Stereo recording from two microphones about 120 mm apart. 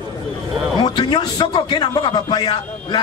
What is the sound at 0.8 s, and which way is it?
A man's voice, 40° left (ahead or behind).